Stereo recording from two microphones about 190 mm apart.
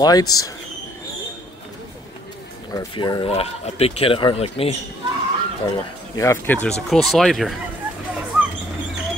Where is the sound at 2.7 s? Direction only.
25° left (ahead or behind).